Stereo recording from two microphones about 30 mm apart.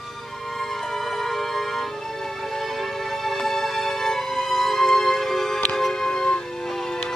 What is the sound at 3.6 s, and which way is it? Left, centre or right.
Music, centre.